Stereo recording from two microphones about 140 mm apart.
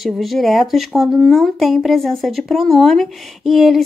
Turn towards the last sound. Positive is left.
turn(degrees=0)  # may be behind; listen again after turning